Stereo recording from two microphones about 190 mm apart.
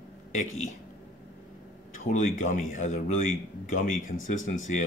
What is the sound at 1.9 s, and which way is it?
Speech, 45° left (ahead or behind).